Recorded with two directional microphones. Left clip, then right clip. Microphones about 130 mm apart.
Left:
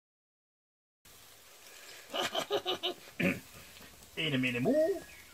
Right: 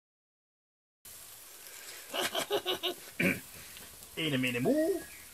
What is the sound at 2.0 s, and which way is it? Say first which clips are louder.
Pig: right 1 dB; 5° left (ahead or behind).